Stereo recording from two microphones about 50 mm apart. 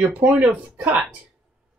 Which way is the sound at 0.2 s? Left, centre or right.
Right.